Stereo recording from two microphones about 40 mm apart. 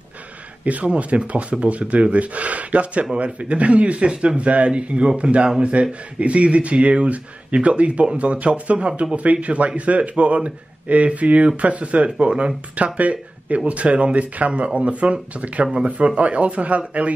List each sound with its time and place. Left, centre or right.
0.7 s speech: right
12.7 s speech: right